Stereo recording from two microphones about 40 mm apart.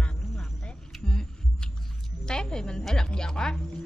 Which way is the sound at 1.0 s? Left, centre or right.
Left.